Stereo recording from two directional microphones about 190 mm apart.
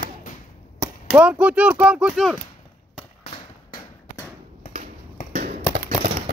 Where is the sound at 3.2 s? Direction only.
30° left (ahead or behind).